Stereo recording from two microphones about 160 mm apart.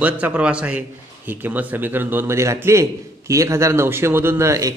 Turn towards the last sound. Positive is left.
turn(degrees=-20)  # may be behind; listen again after turning